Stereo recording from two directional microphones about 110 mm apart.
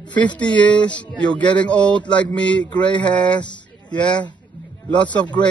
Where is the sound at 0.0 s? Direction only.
45° left (ahead or behind).